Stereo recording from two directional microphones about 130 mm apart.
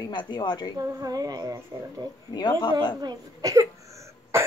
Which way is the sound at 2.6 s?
35° left (ahead or behind).